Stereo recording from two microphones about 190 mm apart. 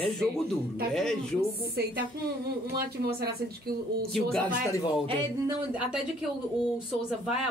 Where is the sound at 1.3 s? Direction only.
55° right (ahead or behind).